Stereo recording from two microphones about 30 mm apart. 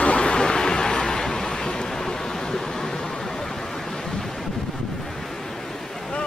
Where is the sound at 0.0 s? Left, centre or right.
Left; by 3.4 s centre.